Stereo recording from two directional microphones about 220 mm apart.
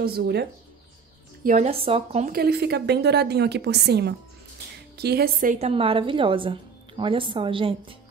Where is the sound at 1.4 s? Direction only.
35° right (ahead or behind).